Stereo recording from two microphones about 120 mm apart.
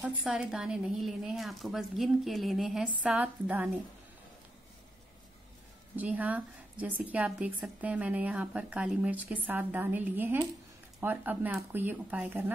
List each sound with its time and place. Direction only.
0.2 s a woman's voice: 5° right (ahead or behind)
5.9 s a woman's voice: 15° right (ahead or behind)